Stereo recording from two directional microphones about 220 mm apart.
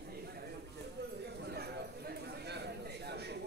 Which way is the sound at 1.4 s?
45° right (ahead or behind).